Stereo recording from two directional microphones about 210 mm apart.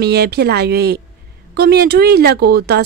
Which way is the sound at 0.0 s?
50° right (ahead or behind).